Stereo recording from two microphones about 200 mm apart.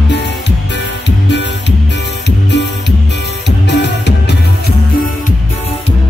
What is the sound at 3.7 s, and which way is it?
Music, 60° left (ahead or behind).